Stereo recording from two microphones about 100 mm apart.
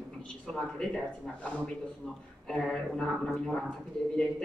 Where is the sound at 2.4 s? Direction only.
5° left (ahead or behind).